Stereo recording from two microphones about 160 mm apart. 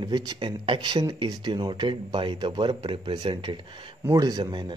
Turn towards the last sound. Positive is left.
turn(degrees=-25)  # may be behind; listen again after turning